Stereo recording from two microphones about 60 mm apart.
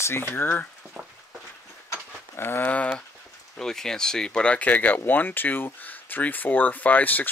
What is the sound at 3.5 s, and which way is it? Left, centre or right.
Speech, centre.